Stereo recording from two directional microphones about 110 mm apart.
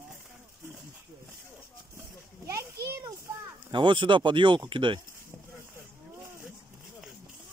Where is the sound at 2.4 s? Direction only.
25° right (ahead or behind).